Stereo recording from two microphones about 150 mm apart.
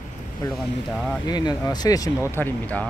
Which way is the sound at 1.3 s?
30° left (ahead or behind).